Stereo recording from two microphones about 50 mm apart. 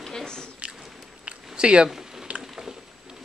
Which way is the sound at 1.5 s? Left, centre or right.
Centre.